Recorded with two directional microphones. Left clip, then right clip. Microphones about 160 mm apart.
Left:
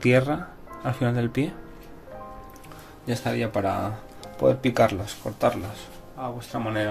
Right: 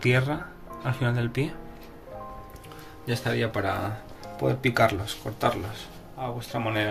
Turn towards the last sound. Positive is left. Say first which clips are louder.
# even
turn(degrees=45)  # may be behind; listen again after turning